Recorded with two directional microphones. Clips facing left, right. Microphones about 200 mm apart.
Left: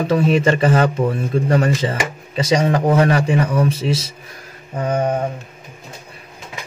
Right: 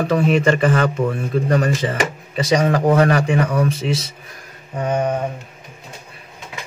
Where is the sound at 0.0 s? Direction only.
30° left (ahead or behind).